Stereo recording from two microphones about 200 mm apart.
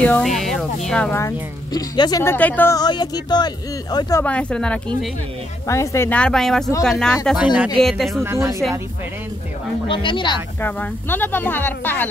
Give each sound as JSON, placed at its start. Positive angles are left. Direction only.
{"t": 0.0, "sound": "speech", "side_deg": 5}
{"t": 0.4, "sound": "music", "side_deg": 0}
{"t": 0.8, "sound": "a woman's voice", "side_deg": 5}
{"t": 4.2, "sound": "speech", "side_deg": 5}
{"t": 8.2, "sound": "speech", "side_deg": -15}
{"t": 9.8, "sound": "speech", "side_deg": 25}
{"t": 10.6, "sound": "a woman's voice", "side_deg": 10}